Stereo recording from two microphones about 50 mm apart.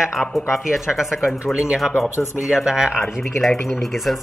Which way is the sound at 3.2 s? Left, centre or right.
Centre.